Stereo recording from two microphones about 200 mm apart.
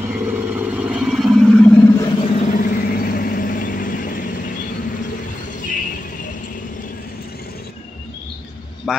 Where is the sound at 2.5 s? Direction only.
45° left (ahead or behind).